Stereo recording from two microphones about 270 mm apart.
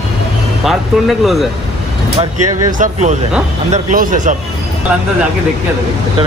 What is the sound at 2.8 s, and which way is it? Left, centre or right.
Speech, right.